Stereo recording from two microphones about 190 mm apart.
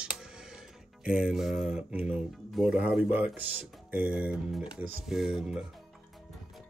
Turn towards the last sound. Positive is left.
turn(degrees=-5)  # may be behind; listen again after turning